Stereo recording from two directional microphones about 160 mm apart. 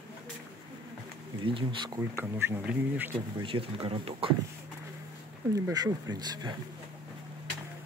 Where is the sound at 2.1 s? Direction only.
15° right (ahead or behind).